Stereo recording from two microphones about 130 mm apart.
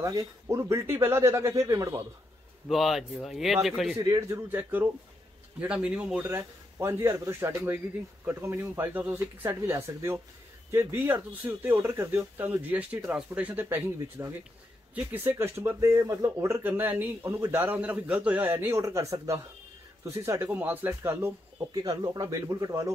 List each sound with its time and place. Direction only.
0.0 s speech: 25° right (ahead or behind)
2.7 s speech: centre (ahead or behind)
4.0 s speech: 30° right (ahead or behind)
4.5 s speech: 15° right (ahead or behind)
21.7 s speech: 30° right (ahead or behind)